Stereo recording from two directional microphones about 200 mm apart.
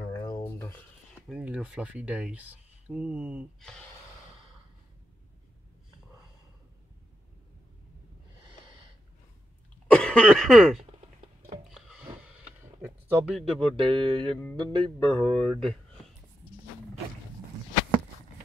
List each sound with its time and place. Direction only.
0.1 s a sound: 20° left (ahead or behind)
1.3 s speech: 5° right (ahead or behind)
9.9 s throat clearing: 5° left (ahead or behind)
11.7 s a sound: 5° right (ahead or behind)
12.8 s speech: centre (ahead or behind)
13.7 s music: 25° right (ahead or behind)
14.3 s music: 10° left (ahead or behind)
14.6 s music: 25° right (ahead or behind)
15.1 s speech: 5° left (ahead or behind)